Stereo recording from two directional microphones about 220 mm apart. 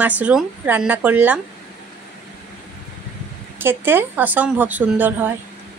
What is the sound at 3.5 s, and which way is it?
A woman's voice, 10° right (ahead or behind).